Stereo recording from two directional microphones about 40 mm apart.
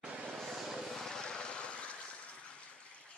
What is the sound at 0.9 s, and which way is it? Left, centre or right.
Vehicle, centre.